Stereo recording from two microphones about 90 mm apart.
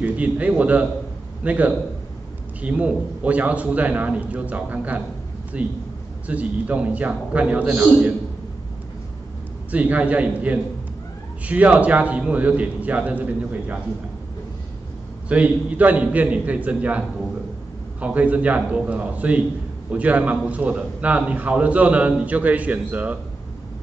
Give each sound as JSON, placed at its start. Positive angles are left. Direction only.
{"t": 0.0, "sound": "a man's voice", "side_deg": -15}
{"t": 9.7, "sound": "a man's voice", "side_deg": -15}
{"t": 15.2, "sound": "a man's voice", "side_deg": -15}
{"t": 18.0, "sound": "a man's voice", "side_deg": -15}